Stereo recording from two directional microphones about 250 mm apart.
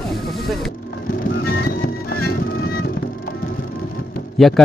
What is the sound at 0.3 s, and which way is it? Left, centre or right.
Vehicle, centre.